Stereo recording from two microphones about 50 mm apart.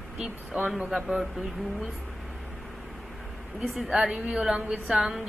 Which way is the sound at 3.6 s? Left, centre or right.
Centre.